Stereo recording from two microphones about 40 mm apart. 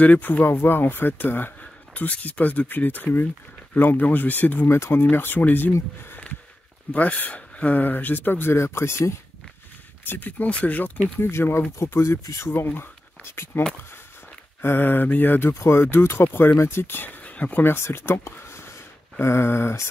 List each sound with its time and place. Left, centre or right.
0.0 s speech: left
0.5 s speech: left
0.9 s speech: left
2.0 s speech: left
4.6 s speech: left
5.1 s speech: left
6.9 s speech: left
10.0 s speech: left
10.4 s speech: left
11.1 s speech: left
16.6 s speech: left
17.2 s a sound: left
17.6 s speech: left
18.4 s a sound: left